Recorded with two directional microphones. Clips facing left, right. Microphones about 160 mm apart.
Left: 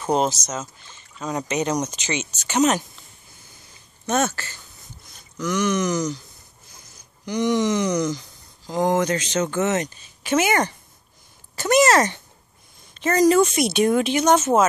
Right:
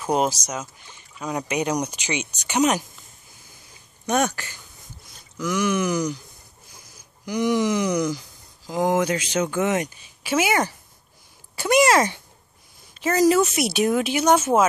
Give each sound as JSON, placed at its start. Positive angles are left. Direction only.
{"t": 0.0, "sound": "speech", "side_deg": -10}
{"t": 4.0, "sound": "speech", "side_deg": -15}
{"t": 7.2, "sound": "speech", "side_deg": -10}